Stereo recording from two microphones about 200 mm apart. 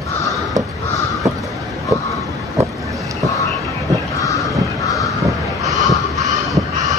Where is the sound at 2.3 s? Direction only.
15° right (ahead or behind).